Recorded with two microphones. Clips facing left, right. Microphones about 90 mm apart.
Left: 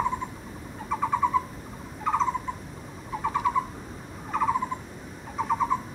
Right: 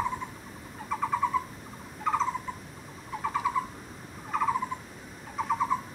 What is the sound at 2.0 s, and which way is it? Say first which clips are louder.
Owl: left 3 dB; centre (ahead or behind).